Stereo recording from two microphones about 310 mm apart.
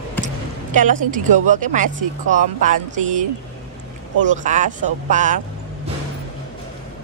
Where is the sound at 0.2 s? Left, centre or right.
Right.